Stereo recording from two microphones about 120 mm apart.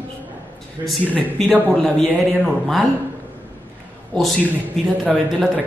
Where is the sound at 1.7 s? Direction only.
5° left (ahead or behind).